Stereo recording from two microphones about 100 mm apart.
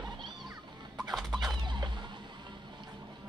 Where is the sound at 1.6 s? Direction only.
50° right (ahead or behind).